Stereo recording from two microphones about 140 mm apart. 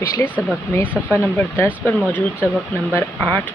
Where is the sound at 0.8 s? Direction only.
10° right (ahead or behind).